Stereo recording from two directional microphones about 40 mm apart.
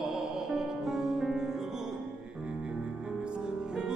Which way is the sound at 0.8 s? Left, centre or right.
Centre.